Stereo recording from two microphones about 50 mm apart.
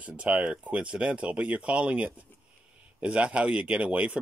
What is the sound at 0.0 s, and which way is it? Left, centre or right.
Speech, right.